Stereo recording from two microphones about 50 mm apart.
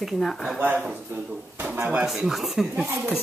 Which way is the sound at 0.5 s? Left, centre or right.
Right.